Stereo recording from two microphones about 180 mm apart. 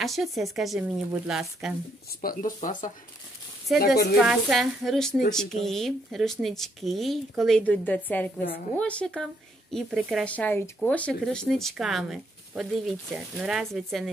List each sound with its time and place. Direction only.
0.0 s a woman's voice: centre (ahead or behind)
2.2 s a woman's voice: 45° left (ahead or behind)
4.2 s a woman's voice: centre (ahead or behind)